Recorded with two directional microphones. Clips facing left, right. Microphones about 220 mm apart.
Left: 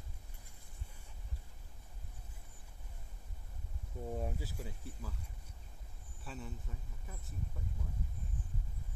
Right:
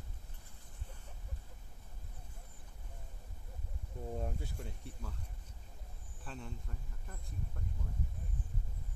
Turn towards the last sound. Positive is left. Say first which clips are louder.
# even
turn(degrees=5)  # may be behind; listen again after turning